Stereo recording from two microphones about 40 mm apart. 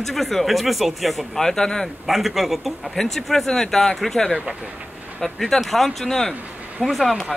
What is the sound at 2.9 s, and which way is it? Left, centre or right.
Speech, centre.